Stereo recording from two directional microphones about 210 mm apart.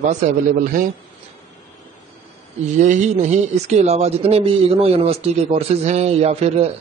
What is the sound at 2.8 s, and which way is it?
Speech, 35° right (ahead or behind).